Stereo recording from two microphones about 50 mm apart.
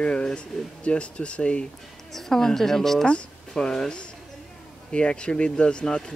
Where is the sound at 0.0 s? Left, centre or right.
Centre.